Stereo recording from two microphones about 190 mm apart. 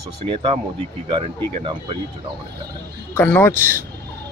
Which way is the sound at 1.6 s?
30° right (ahead or behind).